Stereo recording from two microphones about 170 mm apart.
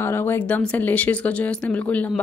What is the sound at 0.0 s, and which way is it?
A woman's voice, 15° left (ahead or behind).